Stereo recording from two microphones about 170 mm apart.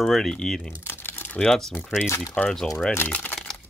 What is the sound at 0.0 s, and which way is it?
Speech, centre (ahead or behind).